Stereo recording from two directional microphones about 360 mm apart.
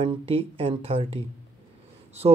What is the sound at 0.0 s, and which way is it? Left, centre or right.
Speech, centre.